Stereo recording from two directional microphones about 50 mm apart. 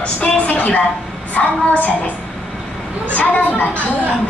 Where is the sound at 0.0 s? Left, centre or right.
Left.